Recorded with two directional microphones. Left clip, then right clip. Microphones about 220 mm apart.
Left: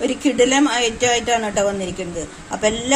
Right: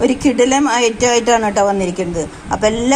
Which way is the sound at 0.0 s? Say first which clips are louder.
Right 4 dB; 25° right (ahead or behind).